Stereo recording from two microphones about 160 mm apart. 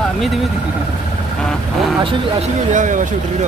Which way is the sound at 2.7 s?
50° right (ahead or behind).